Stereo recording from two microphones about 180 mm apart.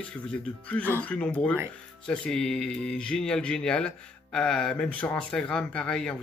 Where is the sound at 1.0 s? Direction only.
5° left (ahead or behind).